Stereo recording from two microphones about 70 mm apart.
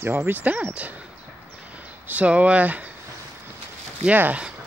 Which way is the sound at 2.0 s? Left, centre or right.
Right.